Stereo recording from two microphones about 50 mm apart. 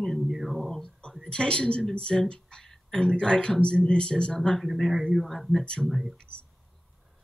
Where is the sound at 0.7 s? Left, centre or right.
Centre.